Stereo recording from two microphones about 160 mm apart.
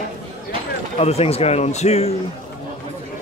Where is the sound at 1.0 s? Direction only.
40° left (ahead or behind).